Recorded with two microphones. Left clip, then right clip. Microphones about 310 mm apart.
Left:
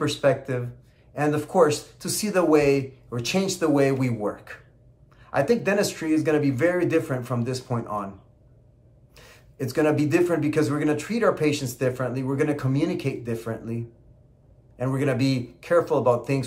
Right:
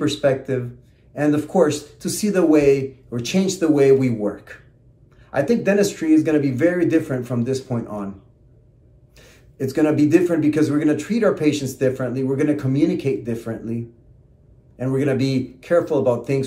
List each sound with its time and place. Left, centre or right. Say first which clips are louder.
0.0 s speech: right 3 dB; centre
9.1 s speech: right 1 dB; centre